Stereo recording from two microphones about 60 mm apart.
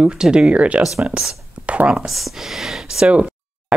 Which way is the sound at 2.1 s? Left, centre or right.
Centre.